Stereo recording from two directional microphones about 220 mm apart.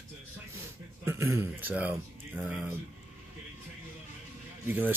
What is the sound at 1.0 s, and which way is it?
Speech, 10° right (ahead or behind).